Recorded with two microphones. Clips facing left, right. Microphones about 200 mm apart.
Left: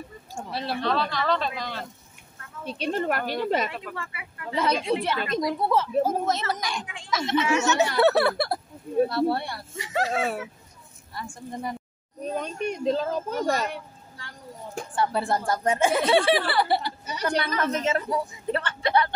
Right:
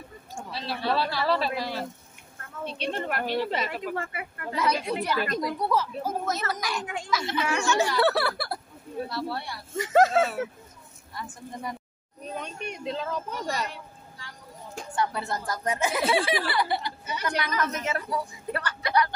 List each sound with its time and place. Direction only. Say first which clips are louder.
0.5 s speech: left 4 dB; 55° left (ahead or behind)
0.8 s speech: right 1 dB; 5° right (ahead or behind)
2.6 s a child's voice: left 4 dB; 40° left (ahead or behind)
3.9 s speech: right 5 dB; 45° right (ahead or behind)
4.6 s speech: left 3 dB; 25° left (ahead or behind)
9.1 s speech: left 8 dB; 55° left (ahead or behind)
9.8 s speech: right 6 dB; 45° right (ahead or behind)
11.1 s speech: left 3 dB; 30° left (ahead or behind)
12.4 s a child's voice: left 7 dB; 40° left (ahead or behind); by 14.3 s 60° left (ahead or behind)
15.0 s a woman's voice: left 4 dB; 30° left (ahead or behind)